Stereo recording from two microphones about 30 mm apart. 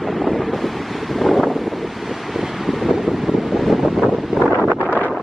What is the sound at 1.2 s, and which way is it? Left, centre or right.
Wind noise, centre.